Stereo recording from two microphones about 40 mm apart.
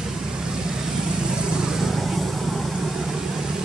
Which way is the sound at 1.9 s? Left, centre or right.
Centre.